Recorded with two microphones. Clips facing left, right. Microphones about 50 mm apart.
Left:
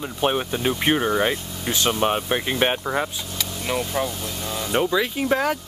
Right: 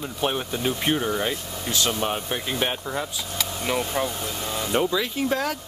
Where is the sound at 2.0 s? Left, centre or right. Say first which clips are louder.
Left 5 dB; left.